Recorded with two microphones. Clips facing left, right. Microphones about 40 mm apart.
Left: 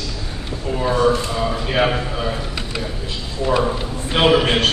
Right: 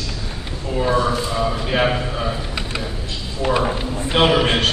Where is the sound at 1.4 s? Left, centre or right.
Centre.